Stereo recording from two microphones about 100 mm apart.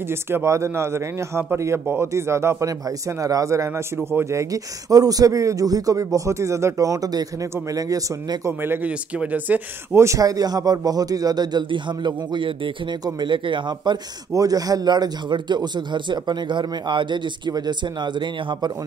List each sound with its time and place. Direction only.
0.1 s speech: 25° right (ahead or behind)
8.5 s speech: 20° right (ahead or behind)
9.9 s a man's voice: 30° right (ahead or behind); by 13.9 s 50° right (ahead or behind)
14.3 s a man's voice: 40° right (ahead or behind)